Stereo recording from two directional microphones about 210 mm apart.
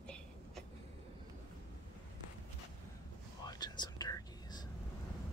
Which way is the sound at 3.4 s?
20° left (ahead or behind).